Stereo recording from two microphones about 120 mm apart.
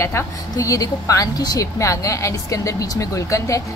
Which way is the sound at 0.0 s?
25° left (ahead or behind).